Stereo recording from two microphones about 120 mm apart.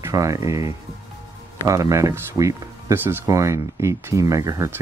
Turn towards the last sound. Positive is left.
turn(degrees=-25)  # may be behind; listen again after turning